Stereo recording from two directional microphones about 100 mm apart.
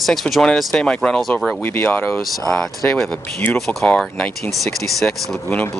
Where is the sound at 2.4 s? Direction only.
5° left (ahead or behind).